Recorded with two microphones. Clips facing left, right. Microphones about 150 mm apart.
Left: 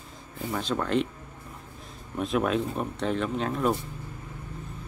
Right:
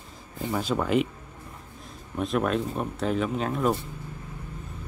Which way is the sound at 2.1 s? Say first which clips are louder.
Even; centre (ahead or behind).